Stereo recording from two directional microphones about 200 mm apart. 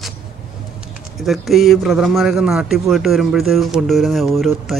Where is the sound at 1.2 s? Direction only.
Centre (ahead or behind).